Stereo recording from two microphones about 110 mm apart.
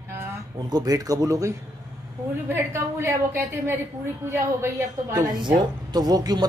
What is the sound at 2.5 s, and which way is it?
A woman's voice, 25° right (ahead or behind).